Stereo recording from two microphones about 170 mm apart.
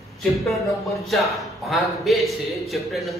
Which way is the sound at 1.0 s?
Centre (ahead or behind).